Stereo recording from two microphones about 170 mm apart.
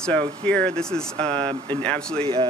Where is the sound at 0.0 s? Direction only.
5° left (ahead or behind).